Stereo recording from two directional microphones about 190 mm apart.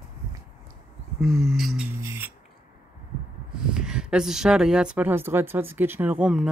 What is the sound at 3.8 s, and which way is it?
Speech, 5° right (ahead or behind).